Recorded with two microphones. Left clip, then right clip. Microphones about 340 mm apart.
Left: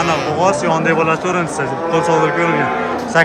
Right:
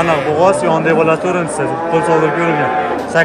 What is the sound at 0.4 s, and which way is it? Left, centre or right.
Speech, centre.